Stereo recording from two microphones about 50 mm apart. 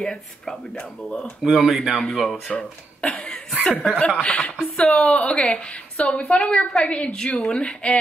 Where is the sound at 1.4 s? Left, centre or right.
Centre.